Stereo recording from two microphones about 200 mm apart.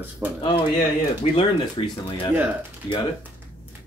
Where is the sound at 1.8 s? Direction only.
25° left (ahead or behind).